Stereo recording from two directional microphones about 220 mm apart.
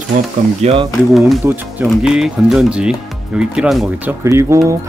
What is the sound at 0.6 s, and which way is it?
Speech, 25° right (ahead or behind).